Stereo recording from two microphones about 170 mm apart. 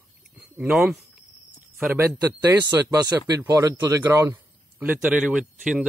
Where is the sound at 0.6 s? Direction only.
5° right (ahead or behind).